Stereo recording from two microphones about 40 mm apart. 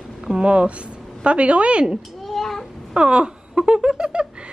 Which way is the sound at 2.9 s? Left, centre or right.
Right.